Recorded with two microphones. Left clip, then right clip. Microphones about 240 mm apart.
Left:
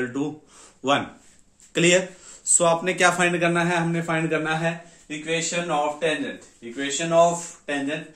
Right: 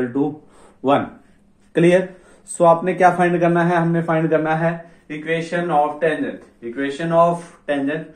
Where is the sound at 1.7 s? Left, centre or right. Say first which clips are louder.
Right 4 dB; left.